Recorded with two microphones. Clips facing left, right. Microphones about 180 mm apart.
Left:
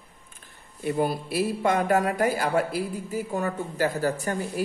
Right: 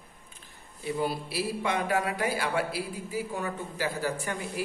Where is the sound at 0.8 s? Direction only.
50° left (ahead or behind).